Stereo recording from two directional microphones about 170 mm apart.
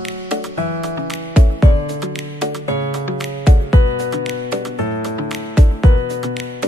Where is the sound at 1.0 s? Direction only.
Centre (ahead or behind).